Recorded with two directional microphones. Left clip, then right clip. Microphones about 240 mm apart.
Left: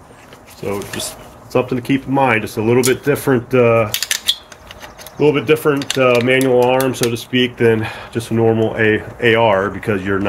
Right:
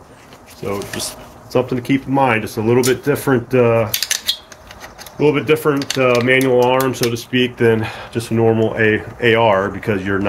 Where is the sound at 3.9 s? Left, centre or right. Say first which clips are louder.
Left 1 dB; centre.